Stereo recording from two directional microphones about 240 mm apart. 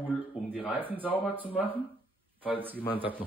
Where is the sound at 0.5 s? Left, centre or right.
Centre.